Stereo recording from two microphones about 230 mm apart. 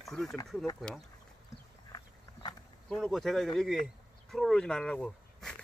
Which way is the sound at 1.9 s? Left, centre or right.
Centre.